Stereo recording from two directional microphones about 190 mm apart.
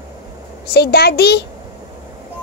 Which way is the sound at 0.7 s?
60° left (ahead or behind).